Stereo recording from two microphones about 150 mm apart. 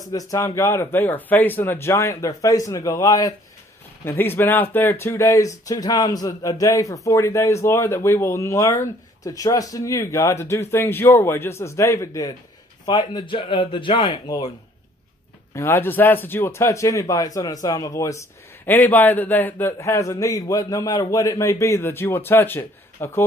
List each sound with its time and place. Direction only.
0.0 s a man's voice: 25° left (ahead or behind)
14.2 s speech: 25° left (ahead or behind)
15.5 s a man's voice: 15° left (ahead or behind)